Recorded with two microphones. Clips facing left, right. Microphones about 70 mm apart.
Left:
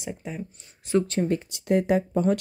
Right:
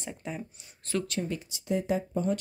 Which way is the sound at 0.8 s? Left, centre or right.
Left.